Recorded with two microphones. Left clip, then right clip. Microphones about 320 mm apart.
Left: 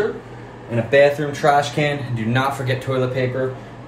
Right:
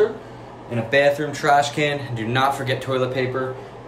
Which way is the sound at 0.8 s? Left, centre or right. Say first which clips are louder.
Left 3 dB; centre.